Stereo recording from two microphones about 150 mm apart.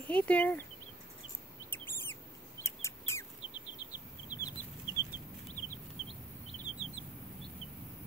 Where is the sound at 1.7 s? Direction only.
15° left (ahead or behind).